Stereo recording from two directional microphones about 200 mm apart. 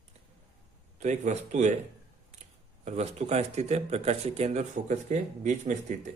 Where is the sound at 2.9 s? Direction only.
35° right (ahead or behind).